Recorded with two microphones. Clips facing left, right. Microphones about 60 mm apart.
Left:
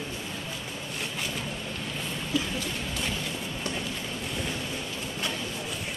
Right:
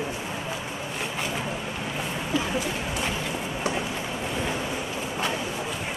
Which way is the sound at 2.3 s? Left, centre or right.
Right.